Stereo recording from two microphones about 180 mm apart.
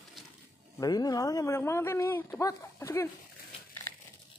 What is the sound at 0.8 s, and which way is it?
Speech, 20° left (ahead or behind).